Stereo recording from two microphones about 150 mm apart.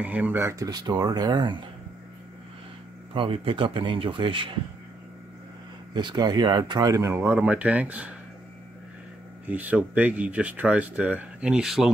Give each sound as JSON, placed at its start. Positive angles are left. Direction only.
{"t": 0.0, "sound": "speech", "side_deg": -10}
{"t": 3.2, "sound": "speech", "side_deg": -35}
{"t": 5.9, "sound": "speech", "side_deg": -30}
{"t": 9.5, "sound": "speech", "side_deg": -10}